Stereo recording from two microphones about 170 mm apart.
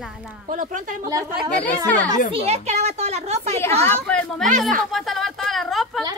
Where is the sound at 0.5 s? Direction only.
50° right (ahead or behind).